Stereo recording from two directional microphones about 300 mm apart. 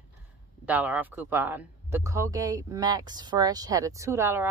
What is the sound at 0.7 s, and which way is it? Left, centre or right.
Speech, centre.